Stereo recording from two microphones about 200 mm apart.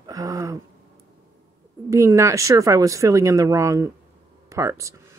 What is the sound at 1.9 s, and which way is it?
Speech, 15° right (ahead or behind).